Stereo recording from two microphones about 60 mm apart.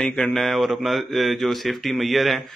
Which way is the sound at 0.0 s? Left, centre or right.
Centre.